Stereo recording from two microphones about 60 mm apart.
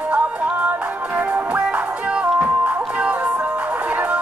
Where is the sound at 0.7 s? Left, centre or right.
Right.